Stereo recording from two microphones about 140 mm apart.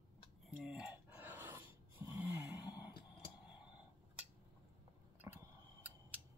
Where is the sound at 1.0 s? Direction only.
15° right (ahead or behind).